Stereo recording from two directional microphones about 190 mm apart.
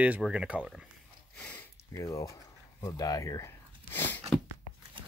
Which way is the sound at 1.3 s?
10° left (ahead or behind).